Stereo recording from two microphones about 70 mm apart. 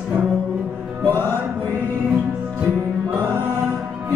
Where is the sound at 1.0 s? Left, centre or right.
Left.